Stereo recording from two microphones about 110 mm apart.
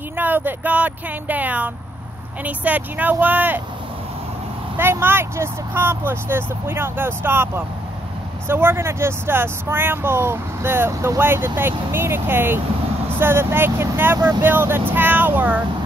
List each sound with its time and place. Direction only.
0.2 s speech: 15° right (ahead or behind)
4.7 s speech: 20° right (ahead or behind)